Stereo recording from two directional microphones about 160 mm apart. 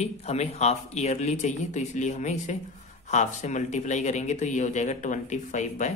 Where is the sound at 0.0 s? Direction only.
40° left (ahead or behind).